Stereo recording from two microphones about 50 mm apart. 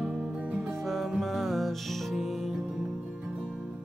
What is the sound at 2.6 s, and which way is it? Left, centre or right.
Music, centre.